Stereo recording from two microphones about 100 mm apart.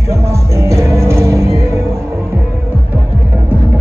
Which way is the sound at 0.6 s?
30° right (ahead or behind).